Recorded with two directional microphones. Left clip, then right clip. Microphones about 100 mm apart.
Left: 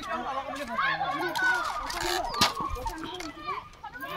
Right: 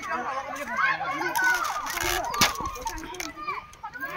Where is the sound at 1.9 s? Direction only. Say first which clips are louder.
Right 2 dB; 75° right (ahead or behind).